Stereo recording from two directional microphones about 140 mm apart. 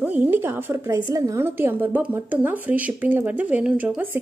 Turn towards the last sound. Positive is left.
turn(degrees=-10)  # may be behind; listen again after turning